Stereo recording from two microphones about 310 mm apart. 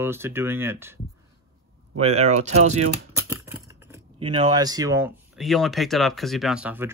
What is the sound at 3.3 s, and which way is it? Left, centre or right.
Speech, centre.